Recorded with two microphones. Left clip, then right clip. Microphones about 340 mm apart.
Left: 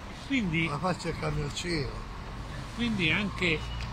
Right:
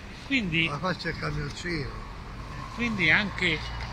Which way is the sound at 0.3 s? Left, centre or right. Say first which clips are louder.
Right 4 dB; centre.